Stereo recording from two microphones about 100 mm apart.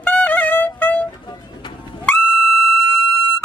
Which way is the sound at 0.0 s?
20° left (ahead or behind).